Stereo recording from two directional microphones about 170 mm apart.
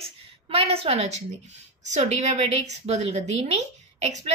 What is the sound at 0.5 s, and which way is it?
A woman's voice, 35° right (ahead or behind).